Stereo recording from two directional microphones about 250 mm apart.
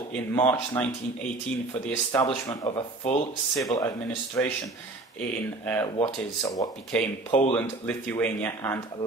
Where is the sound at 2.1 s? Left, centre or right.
Centre.